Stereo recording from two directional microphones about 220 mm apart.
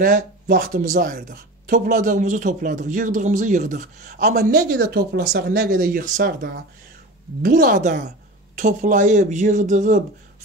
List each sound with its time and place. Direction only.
0.0 s speech: 40° right (ahead or behind)